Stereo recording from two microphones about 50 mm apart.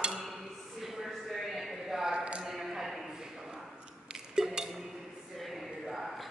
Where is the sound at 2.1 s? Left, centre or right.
Right.